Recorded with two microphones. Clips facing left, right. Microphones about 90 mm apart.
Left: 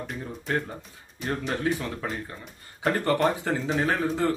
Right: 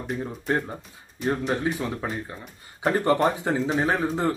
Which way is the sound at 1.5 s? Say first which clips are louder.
Right 2 dB; 20° right (ahead or behind).